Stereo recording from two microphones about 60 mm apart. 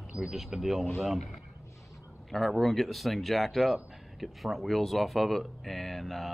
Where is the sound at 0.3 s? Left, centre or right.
Centre.